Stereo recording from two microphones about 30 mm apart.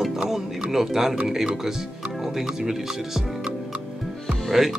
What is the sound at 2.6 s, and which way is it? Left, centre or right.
Speech, centre.